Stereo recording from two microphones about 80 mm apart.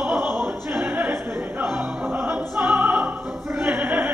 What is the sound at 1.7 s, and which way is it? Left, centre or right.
Music, centre.